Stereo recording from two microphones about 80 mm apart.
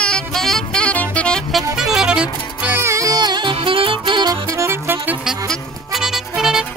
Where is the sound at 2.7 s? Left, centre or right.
Right.